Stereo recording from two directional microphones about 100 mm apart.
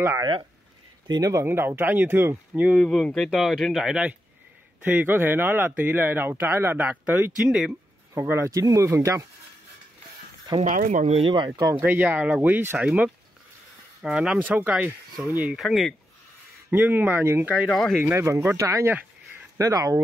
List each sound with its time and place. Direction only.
0.2 s speech: 50° right (ahead or behind)
1.3 s speech: 25° right (ahead or behind)
2.7 s speech: centre (ahead or behind)
4.8 s speech: 20° right (ahead or behind)
7.4 s speech: 5° right (ahead or behind)
8.1 s speech: 30° right (ahead or behind)
11.1 s speech: 65° right (ahead or behind); by 11.7 s 50° right (ahead or behind)
11.8 s speech: 20° right (ahead or behind)
15.5 s speech: centre (ahead or behind)
16.7 s speech: 20° right (ahead or behind)
17.6 s speech: 5° left (ahead or behind)
18.0 s speech: 25° right (ahead or behind)